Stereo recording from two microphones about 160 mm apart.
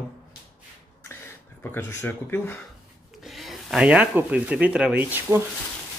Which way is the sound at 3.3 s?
Centre (ahead or behind).